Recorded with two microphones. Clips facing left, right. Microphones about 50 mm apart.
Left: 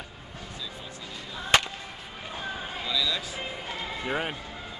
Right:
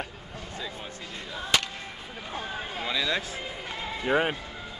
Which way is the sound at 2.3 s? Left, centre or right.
Right.